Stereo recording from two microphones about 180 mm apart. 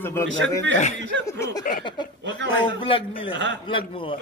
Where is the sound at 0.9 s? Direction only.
90° right.